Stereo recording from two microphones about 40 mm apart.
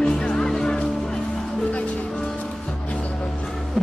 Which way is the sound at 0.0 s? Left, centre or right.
Left.